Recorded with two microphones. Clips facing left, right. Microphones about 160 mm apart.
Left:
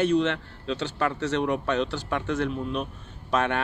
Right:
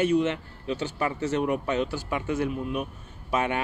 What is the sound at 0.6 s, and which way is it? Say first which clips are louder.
Speech: left 1 dB; 75° left (ahead or behind).